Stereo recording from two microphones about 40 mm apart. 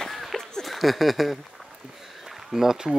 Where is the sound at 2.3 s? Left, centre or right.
Centre.